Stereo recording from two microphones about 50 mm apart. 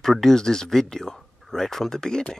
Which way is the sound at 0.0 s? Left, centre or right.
Centre.